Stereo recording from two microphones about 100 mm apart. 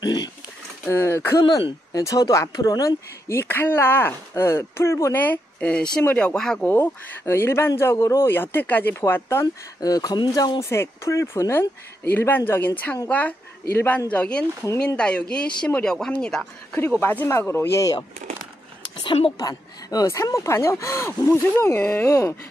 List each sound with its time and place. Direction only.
0.0 s a sound: 45° left (ahead or behind)
0.8 s speech: 25° left (ahead or behind); by 6.6 s 5° left (ahead or behind)
6.6 s speech: 20° left (ahead or behind)
9.8 s speech: 40° left (ahead or behind)
10.6 s speech: 25° left (ahead or behind); by 16.8 s 10° left (ahead or behind)
17.0 s speech: 20° left (ahead or behind)
19.3 s speech: 40° left (ahead or behind); by 22.1 s 20° left (ahead or behind)